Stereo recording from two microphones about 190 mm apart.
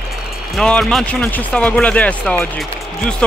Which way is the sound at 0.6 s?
5° left (ahead or behind).